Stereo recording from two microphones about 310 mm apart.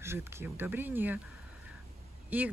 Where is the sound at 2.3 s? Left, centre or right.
Centre.